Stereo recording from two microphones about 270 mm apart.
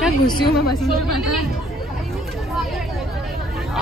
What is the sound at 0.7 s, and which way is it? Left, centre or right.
Speech, left.